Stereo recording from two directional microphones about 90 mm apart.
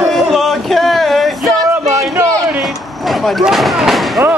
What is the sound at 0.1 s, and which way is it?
Music, centre (ahead or behind).